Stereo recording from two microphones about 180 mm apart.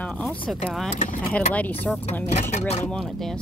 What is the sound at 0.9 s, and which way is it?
Speech, 40° left (ahead or behind).